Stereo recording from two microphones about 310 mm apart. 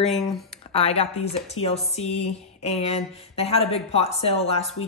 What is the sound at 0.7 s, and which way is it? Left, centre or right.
Speech, centre.